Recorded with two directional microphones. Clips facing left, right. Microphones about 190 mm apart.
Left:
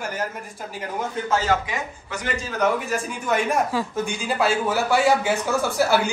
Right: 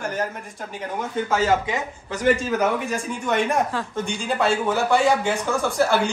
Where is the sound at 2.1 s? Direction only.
35° right (ahead or behind).